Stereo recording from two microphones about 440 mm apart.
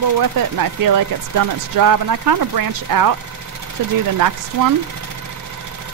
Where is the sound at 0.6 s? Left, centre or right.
Right.